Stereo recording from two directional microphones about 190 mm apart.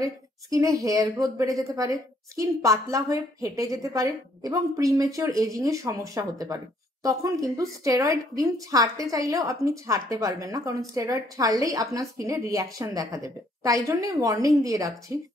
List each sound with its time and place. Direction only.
0.0 s a woman's voice: 15° right (ahead or behind)